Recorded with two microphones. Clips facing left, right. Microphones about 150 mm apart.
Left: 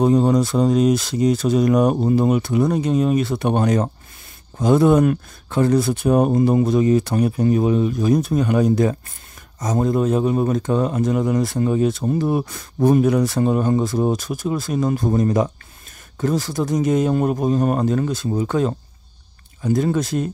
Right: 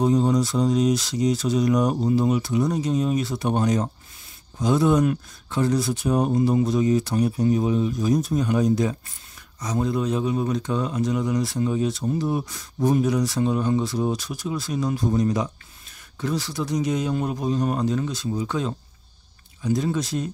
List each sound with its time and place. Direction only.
0.0 s speech: 55° left (ahead or behind)